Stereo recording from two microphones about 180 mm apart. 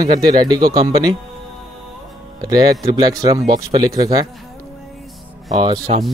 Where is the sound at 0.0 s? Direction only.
25° right (ahead or behind).